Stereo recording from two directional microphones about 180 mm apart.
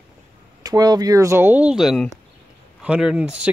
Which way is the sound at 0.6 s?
20° right (ahead or behind).